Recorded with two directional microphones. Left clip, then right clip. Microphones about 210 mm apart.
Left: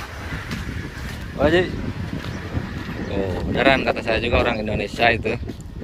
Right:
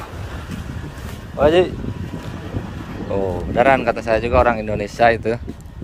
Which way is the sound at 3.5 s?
15° right (ahead or behind).